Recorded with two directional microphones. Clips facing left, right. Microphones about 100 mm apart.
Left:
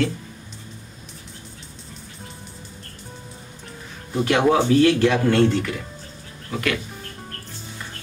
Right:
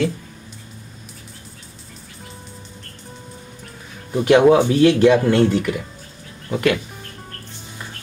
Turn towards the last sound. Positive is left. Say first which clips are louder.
# right 6 dB
turn(degrees=-25)  # may be behind; listen again after turning